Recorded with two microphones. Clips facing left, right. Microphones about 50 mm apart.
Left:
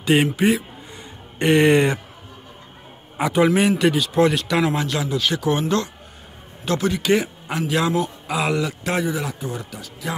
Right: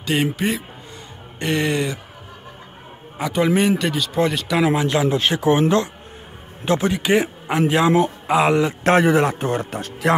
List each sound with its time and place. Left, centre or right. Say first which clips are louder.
0.0 s a man's voice: left 3 dB; centre
1.4 s speech: left 6 dB; left
3.2 s a man's voice: left 2 dB; centre
3.4 s speech: even; centre
4.8 s speech: right 4 dB; right
9.0 s speech: right 8 dB; right